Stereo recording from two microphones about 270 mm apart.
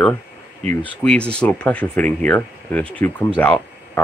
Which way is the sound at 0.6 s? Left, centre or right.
Right.